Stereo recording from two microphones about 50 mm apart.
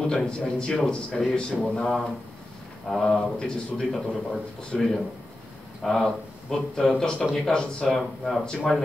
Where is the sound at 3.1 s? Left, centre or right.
Centre.